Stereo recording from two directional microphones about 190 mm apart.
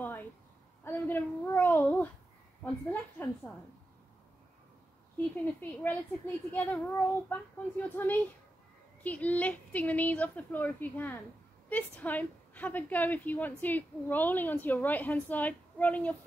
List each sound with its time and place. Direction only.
0.8 s a woman's voice: 10° left (ahead or behind)
5.1 s a woman's voice: 10° left (ahead or behind)